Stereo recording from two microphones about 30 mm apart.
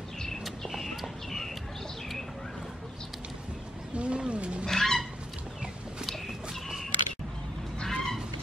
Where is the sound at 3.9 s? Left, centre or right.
Right.